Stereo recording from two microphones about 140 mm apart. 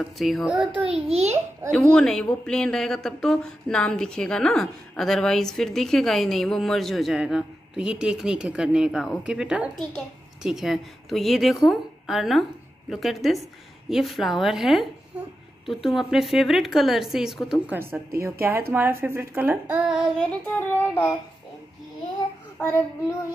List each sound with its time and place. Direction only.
0.2 s a woman's voice: centre (ahead or behind)
1.0 s a child's voice: 50° right (ahead or behind)
1.7 s a woman's voice: 5° left (ahead or behind)
17.9 s a woman's voice: 20° right (ahead or behind); by 20.1 s 5° right (ahead or behind)
20.2 s child singing: 10° left (ahead or behind)
22.6 s child singing: 15° left (ahead or behind)